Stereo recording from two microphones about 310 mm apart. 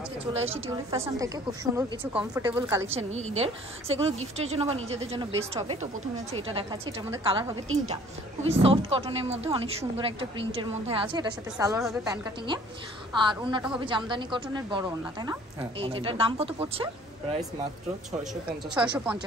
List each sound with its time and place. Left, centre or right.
0.3 s a woman's voice: centre
3.2 s a woman's voice: centre
15.8 s a woman's voice: centre